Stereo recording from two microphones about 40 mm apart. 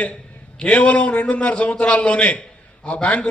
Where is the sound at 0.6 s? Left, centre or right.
Left.